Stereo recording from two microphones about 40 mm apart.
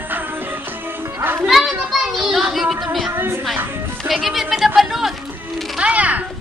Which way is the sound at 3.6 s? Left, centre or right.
Right.